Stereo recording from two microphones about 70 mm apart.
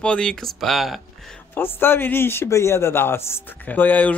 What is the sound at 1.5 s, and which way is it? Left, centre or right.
Speech, left.